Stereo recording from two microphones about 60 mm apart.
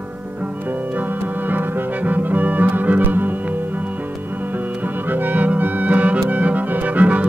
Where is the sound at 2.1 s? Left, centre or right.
Right.